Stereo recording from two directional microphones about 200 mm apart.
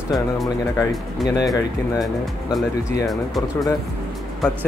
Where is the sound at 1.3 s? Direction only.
20° left (ahead or behind).